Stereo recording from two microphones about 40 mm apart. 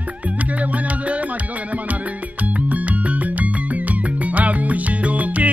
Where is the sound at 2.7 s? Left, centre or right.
Right.